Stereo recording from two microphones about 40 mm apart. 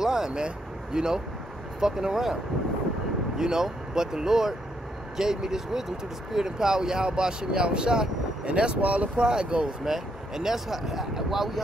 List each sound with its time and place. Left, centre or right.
0.0 s speech: centre
3.3 s speech: centre
9.8 s speech: centre